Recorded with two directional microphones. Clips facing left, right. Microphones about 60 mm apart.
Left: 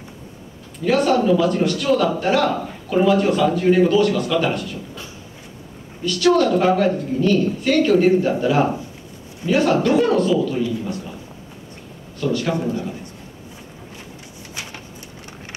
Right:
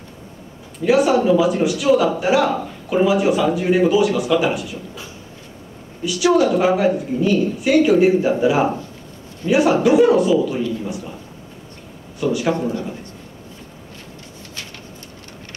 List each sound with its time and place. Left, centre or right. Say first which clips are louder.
0.8 s a man's voice: right 2 dB; centre
6.0 s a man's voice: even; centre
12.2 s a man's voice: right 2 dB; centre
14.5 s a sound: left 3 dB; centre